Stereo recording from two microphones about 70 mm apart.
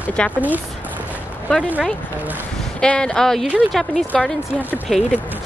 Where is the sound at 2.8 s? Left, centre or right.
Centre.